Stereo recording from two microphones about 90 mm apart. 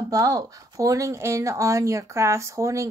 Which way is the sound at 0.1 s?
35° right (ahead or behind).